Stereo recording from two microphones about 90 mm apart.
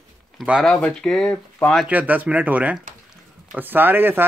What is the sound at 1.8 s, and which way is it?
Speech, 20° right (ahead or behind).